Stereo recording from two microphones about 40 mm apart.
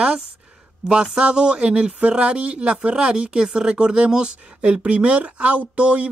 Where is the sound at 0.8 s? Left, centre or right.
Right.